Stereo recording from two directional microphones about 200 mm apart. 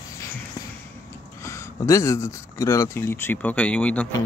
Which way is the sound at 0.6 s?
15° left (ahead or behind).